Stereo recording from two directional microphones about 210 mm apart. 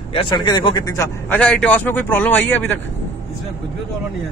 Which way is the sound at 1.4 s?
5° left (ahead or behind).